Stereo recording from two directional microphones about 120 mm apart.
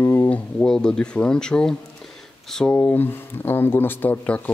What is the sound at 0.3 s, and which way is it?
Speech, 10° left (ahead or behind).